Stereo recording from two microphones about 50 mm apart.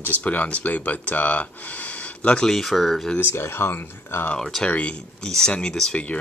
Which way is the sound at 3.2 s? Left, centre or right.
Left.